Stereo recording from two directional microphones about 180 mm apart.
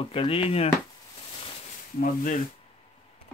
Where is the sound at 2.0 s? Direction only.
45° left (ahead or behind).